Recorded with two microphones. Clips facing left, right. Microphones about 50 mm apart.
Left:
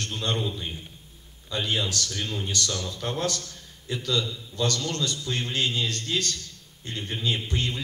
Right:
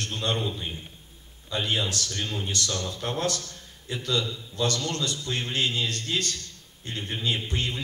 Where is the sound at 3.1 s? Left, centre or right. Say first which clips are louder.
Right 1 dB; right.